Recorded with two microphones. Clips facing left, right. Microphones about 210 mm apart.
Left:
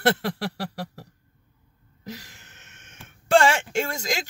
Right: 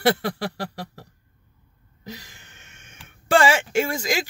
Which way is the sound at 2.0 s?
5° left (ahead or behind).